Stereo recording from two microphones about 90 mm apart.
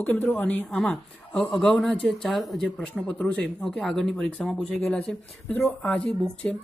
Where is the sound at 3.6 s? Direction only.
Centre (ahead or behind).